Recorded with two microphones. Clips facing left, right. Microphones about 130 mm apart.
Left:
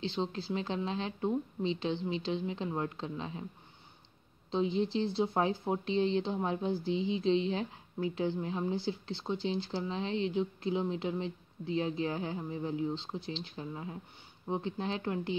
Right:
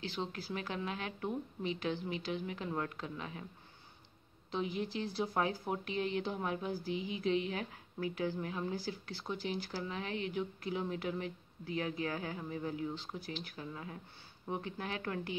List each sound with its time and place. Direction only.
0.0 s speech: 25° left (ahead or behind)
4.5 s speech: 25° left (ahead or behind)